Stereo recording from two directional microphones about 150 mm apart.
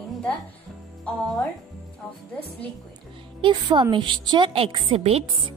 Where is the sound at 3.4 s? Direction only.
30° right (ahead or behind).